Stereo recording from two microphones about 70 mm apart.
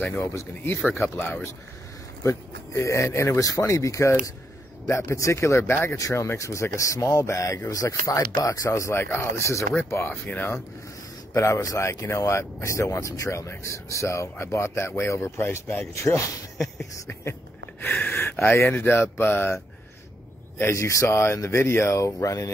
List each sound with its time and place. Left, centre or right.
0.0 s speech: left
0.8 s speech: left
2.2 s speech: left
5.9 s speech: left
9.0 s speech: left
9.4 s speech: left
10.0 s speech: left
11.3 s speech: left
17.8 s speech: left
20.7 s speech: left